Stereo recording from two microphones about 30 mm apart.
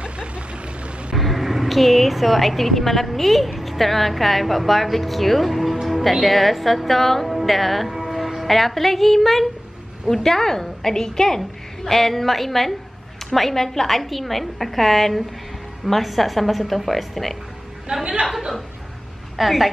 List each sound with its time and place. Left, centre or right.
1.1 s a woman's voice: centre
7.9 s music: centre
8.5 s a woman's voice: centre
17.9 s a woman's voice: right
19.3 s a woman's voice: centre